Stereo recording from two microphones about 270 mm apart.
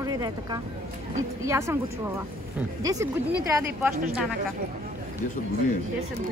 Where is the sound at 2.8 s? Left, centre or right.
Centre.